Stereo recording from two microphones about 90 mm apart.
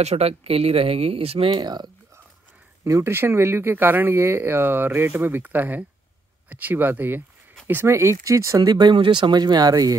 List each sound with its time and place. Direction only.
0.3 s speech: 90° right
1.6 s speech: 55° right (ahead or behind)
2.8 s speech: 30° right (ahead or behind)
8.6 s speech: 55° right (ahead or behind)